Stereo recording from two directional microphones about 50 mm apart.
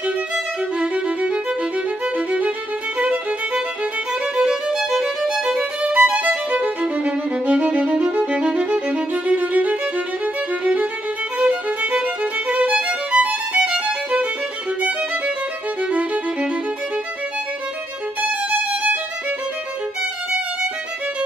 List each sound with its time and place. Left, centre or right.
0.7 s music: centre
4.1 s music: centre
5.9 s music: right
13.7 s violin: right
14.8 s music: right
18.2 s violin: right